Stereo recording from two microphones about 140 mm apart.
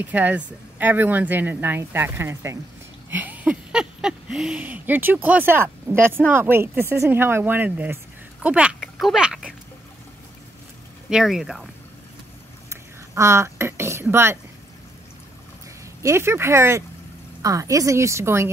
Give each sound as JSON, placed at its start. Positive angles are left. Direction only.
{"t": 0.0, "sound": "speech", "side_deg": -10}
{"t": 11.1, "sound": "speech", "side_deg": -5}
{"t": 12.6, "sound": "a sound", "side_deg": -20}
{"t": 16.0, "sound": "a woman's voice", "side_deg": -20}